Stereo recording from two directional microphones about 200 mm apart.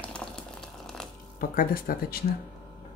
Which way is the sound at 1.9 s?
45° left (ahead or behind).